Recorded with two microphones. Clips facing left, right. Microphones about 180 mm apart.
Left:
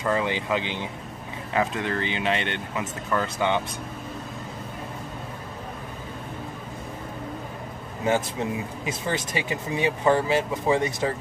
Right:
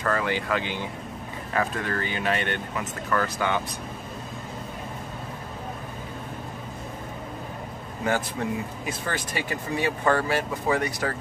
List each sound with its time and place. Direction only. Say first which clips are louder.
0.0 s speech: left 1 dB; 20° left (ahead or behind)
8.0 s speech: left 2 dB; 20° left (ahead or behind)